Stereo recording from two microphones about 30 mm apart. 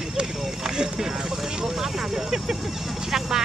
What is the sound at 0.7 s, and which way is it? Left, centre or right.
Speech, centre.